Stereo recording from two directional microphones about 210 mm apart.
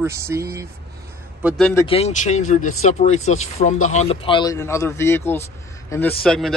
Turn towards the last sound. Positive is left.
turn(degrees=5)  # may be behind; listen again after turning